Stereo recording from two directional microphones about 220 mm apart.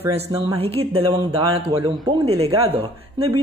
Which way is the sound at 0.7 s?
25° right (ahead or behind).